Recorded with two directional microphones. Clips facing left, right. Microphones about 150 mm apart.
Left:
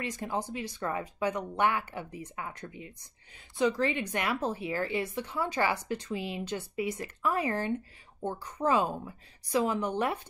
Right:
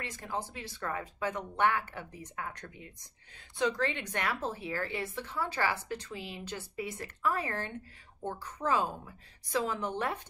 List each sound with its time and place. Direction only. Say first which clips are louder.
0.0 s a woman's voice: left 4 dB; 15° left (ahead or behind)